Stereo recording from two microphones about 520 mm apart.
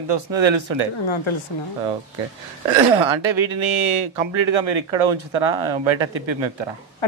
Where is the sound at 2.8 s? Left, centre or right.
Right.